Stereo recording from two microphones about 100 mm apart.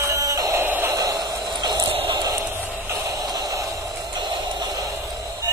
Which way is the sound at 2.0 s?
55° right (ahead or behind).